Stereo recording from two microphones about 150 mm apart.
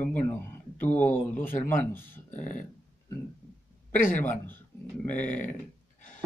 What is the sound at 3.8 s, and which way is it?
Speech, 15° left (ahead or behind).